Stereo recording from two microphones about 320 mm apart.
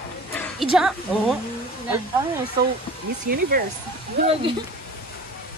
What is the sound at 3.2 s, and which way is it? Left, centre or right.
Speech, right.